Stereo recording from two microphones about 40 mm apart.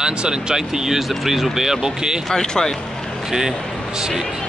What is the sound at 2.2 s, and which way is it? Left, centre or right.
Speech, centre.